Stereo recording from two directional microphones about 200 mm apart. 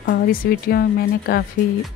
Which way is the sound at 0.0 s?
50° left (ahead or behind).